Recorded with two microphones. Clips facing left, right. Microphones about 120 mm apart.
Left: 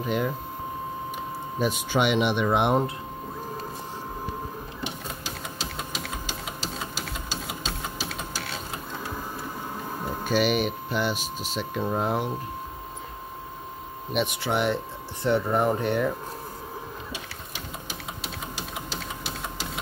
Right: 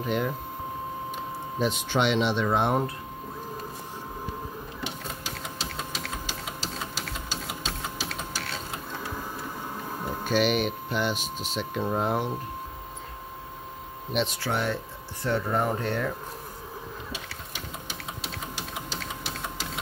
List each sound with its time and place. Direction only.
0.0 s speech: centre (ahead or behind)
1.6 s speech: 10° left (ahead or behind)
5.6 s printer: 5° left (ahead or behind)
10.0 s speech: 5° left (ahead or behind)
14.1 s speech: 15° left (ahead or behind)